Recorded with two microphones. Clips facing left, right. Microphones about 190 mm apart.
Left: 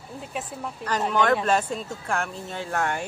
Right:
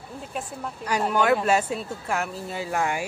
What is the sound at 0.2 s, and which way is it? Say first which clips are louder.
Speech: even; centre (ahead or behind).